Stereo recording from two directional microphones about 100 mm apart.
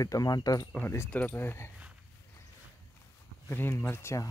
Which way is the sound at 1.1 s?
20° left (ahead or behind).